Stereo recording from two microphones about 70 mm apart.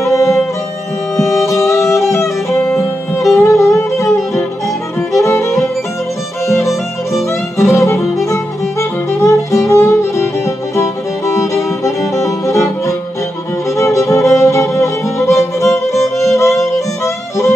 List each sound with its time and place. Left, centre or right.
0.0 s music: left
6.6 s violin: centre
7.7 s music: left
13.7 s music: left